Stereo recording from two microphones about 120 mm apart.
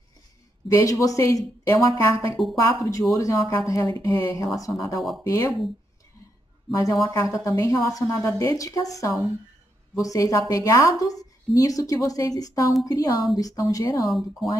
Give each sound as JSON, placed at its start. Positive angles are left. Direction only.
{"t": 0.7, "sound": "speech", "side_deg": 25}
{"t": 6.7, "sound": "speech", "side_deg": 30}
{"t": 9.9, "sound": "speech", "side_deg": 30}
{"t": 14.0, "sound": "speech", "side_deg": 0}